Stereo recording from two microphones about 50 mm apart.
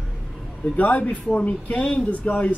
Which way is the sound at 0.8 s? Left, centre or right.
Left.